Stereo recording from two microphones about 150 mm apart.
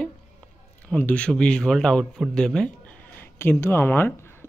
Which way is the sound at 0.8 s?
10° left (ahead or behind).